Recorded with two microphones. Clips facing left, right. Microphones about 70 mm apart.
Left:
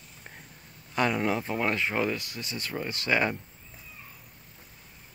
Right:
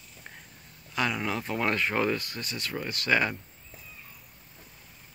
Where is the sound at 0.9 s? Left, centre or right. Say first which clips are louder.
Left 3 dB; left.